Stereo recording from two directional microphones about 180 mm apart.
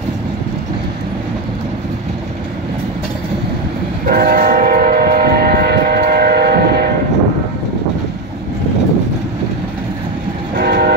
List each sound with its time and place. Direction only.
4.1 s train: 55° right (ahead or behind)
10.5 s train: 60° right (ahead or behind)